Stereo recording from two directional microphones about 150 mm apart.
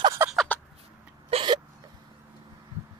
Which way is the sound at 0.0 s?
20° right (ahead or behind).